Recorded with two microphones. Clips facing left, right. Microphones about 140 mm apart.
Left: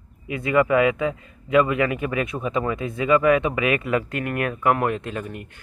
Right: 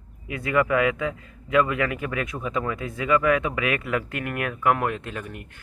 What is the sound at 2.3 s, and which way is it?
Speech, 20° left (ahead or behind).